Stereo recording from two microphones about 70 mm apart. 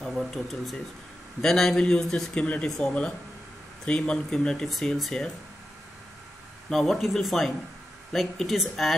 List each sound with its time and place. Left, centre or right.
0.1 s a man's voice: centre
2.4 s a man's voice: centre
6.7 s speech: centre